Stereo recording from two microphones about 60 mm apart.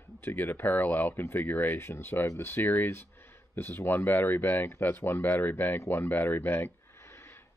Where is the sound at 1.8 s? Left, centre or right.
Left.